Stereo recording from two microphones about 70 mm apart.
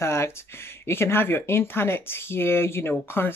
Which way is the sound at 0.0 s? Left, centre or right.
Left.